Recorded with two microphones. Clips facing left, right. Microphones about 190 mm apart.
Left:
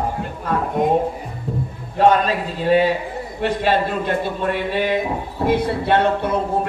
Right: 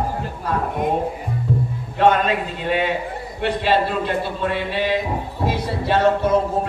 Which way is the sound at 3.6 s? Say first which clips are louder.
Right 1 dB; 45° left (ahead or behind).